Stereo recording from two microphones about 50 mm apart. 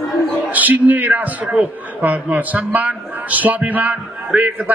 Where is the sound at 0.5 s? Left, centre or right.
Right.